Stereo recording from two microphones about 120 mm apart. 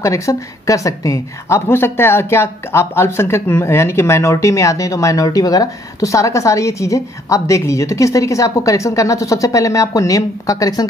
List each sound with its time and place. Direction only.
0.0 s speech: 25° left (ahead or behind)